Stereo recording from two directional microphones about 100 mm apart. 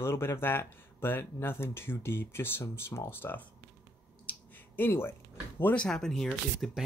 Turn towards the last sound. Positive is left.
turn(degrees=0)  # may be behind; listen again after turning